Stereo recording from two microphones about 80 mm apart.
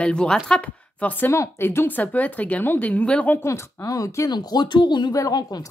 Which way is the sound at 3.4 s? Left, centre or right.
Left.